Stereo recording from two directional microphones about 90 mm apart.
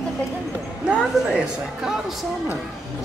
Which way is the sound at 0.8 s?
5° right (ahead or behind).